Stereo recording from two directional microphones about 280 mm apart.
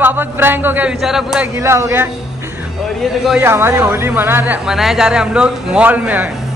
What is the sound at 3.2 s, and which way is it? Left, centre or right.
A woman's voice, centre.